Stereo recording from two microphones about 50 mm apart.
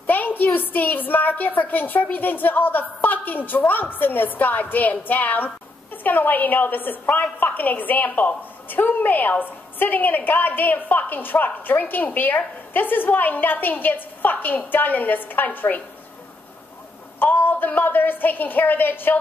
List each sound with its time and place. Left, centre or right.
0.0 s a sound: left
0.6 s a woman's voice: left
17.2 s a woman's voice: left